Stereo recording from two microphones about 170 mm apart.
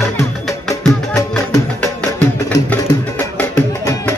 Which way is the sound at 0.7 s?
5° left (ahead or behind).